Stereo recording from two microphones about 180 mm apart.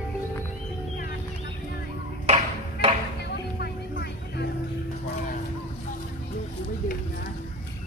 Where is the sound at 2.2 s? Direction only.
35° right (ahead or behind).